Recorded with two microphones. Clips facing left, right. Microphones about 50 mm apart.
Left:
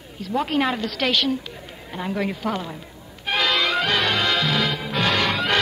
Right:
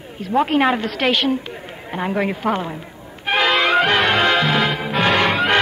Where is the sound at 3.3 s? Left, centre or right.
Right.